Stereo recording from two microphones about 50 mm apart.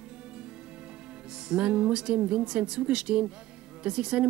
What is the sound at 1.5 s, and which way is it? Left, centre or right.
A woman's voice, centre.